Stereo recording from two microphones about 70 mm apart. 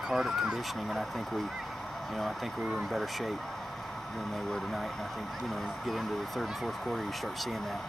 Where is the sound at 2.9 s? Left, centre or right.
Centre.